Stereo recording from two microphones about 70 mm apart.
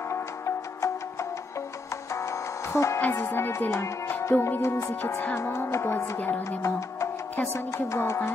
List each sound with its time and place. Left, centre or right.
0.1 s music: left
2.7 s music: left
3.0 s speech: left